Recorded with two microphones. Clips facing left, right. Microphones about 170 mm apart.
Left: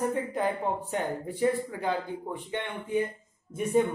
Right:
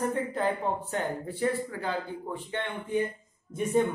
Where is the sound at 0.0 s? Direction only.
15° left (ahead or behind).